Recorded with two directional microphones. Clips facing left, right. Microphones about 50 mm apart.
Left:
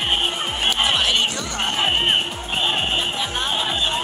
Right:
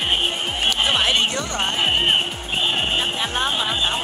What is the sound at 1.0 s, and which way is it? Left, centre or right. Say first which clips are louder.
Music: right 1 dB; centre.